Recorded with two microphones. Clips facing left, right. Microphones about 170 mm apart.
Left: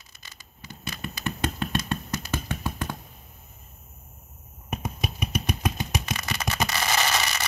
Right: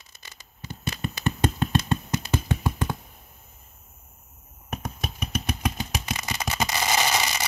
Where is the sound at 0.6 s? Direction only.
25° right (ahead or behind).